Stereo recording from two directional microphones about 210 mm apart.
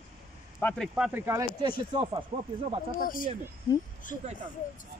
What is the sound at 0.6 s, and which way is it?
Speech, 10° left (ahead or behind).